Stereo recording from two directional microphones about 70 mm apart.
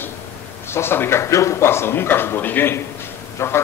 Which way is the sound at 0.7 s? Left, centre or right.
Left.